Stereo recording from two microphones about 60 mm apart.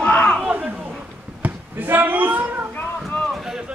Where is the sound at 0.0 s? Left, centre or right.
Centre.